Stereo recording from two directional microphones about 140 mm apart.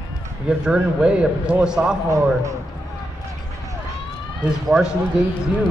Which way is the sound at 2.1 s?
20° right (ahead or behind).